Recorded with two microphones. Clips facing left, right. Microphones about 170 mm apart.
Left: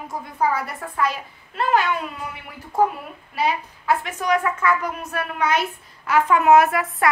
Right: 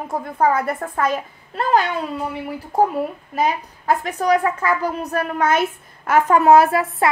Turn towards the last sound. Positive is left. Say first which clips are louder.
# right 3 dB
turn(degrees=-30)  # may be behind; listen again after turning